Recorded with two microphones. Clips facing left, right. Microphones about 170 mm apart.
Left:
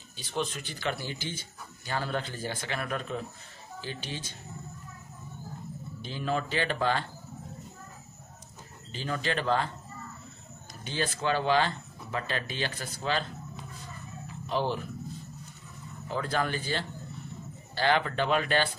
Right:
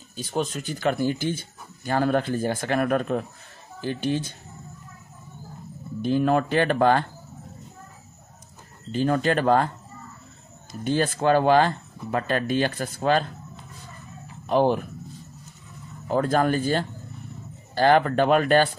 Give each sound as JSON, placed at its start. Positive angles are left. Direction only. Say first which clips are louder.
{"t": 0.1, "sound": "speech", "louder": "right 6 dB", "side_deg": -45}
{"t": 6.0, "sound": "speech", "louder": "right 11 dB", "side_deg": -55}
{"t": 8.9, "sound": "speech", "louder": "right 10 dB", "side_deg": -50}
{"t": 10.8, "sound": "speech", "louder": "right 9 dB", "side_deg": -50}
{"t": 14.4, "sound": "speech", "louder": "right 9 dB", "side_deg": -55}
{"t": 16.1, "sound": "speech", "louder": "right 9 dB", "side_deg": -45}